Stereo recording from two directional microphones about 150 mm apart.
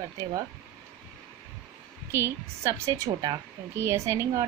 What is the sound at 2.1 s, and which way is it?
A woman's voice, 20° right (ahead or behind).